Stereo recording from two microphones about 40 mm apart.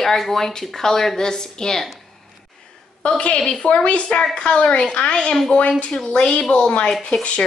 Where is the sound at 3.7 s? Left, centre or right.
Left.